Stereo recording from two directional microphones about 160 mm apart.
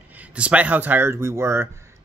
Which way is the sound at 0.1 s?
10° right (ahead or behind).